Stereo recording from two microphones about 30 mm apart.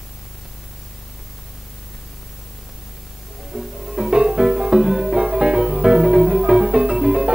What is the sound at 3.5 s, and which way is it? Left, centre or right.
Music, right.